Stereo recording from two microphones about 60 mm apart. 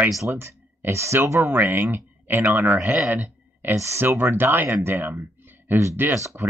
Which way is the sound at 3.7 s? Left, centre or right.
Right.